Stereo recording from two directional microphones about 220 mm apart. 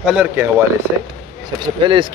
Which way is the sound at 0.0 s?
5° right (ahead or behind).